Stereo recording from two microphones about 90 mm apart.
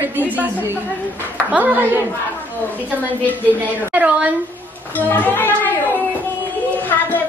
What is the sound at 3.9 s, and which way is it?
Speech, 20° right (ahead or behind).